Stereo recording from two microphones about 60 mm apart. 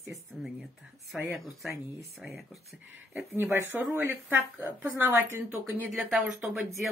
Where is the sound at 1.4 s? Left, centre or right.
Centre.